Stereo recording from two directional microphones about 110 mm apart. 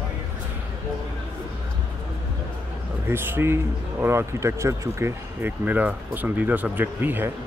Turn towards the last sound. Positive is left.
turn(degrees=-15)  # may be behind; listen again after turning